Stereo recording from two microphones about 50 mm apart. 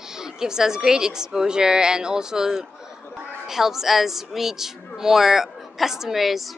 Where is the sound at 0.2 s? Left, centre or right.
Centre.